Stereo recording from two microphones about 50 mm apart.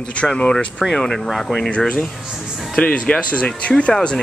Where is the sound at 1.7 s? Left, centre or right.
Left.